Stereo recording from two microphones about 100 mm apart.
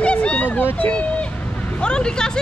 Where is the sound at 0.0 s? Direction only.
10° left (ahead or behind).